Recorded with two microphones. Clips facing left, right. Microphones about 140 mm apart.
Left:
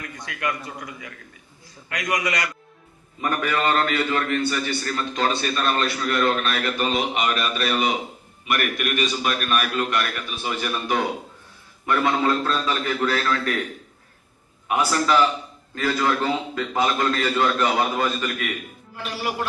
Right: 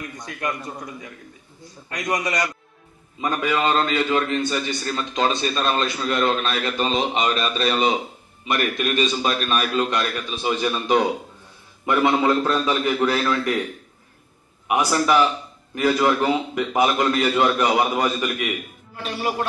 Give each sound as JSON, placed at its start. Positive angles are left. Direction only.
{"t": 0.4, "sound": "a man's voice", "side_deg": -35}
{"t": 3.2, "sound": "a man's voice", "side_deg": -20}
{"t": 14.7, "sound": "a man's voice", "side_deg": -15}